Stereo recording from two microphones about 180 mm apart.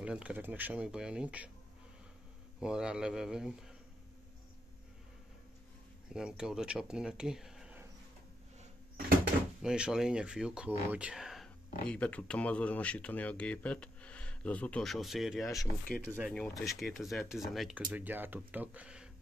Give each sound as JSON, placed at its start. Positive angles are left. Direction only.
{"t": 0.0, "sound": "speech", "side_deg": -5}
{"t": 2.6, "sound": "speech", "side_deg": -5}
{"t": 6.1, "sound": "speech", "side_deg": -5}
{"t": 9.6, "sound": "speech", "side_deg": -5}
{"t": 15.9, "sound": "speech", "side_deg": 55}
{"t": 16.3, "sound": "speech", "side_deg": 5}